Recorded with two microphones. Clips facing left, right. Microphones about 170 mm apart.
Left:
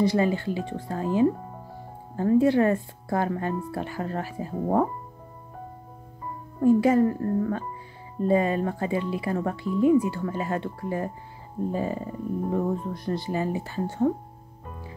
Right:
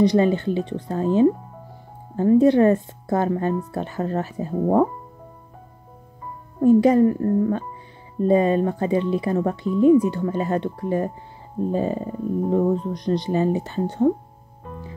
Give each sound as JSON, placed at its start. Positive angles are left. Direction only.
{"t": 0.0, "sound": "speech", "side_deg": -20}
{"t": 6.6, "sound": "speech", "side_deg": -20}